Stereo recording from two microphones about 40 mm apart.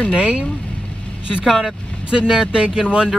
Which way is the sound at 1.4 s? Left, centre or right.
Centre.